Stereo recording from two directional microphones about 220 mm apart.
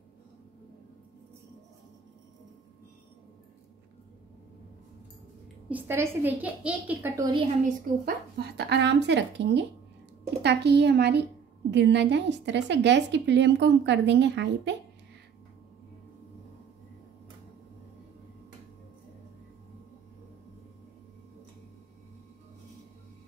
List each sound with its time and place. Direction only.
5.7 s a woman's voice: 10° right (ahead or behind)
8.0 s a woman's voice: 45° right (ahead or behind)